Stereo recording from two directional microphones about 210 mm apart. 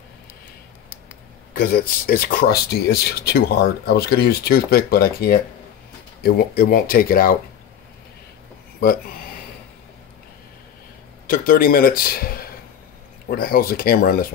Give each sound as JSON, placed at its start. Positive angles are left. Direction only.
{"t": 1.5, "sound": "speech", "side_deg": 45}
{"t": 11.2, "sound": "speech", "side_deg": 45}